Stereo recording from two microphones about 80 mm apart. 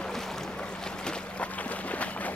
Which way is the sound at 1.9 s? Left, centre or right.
Centre.